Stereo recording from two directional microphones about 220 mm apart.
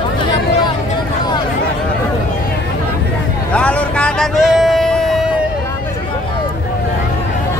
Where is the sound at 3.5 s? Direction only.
5° left (ahead or behind).